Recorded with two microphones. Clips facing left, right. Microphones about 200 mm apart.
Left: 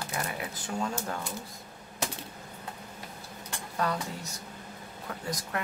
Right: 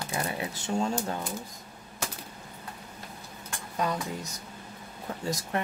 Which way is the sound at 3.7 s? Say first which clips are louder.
Right 1 dB; 15° right (ahead or behind).